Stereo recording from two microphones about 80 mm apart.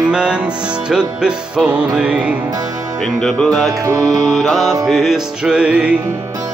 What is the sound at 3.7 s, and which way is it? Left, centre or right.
Music, right.